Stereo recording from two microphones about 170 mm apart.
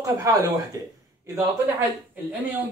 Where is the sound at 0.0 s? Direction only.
20° right (ahead or behind).